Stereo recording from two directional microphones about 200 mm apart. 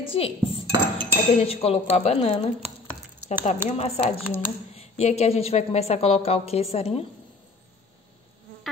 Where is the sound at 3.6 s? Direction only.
35° left (ahead or behind).